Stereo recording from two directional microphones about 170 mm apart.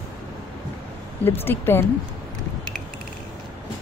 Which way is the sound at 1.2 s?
10° left (ahead or behind).